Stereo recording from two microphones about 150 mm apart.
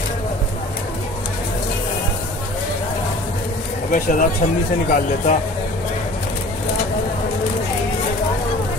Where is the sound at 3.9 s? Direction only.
65° left (ahead or behind).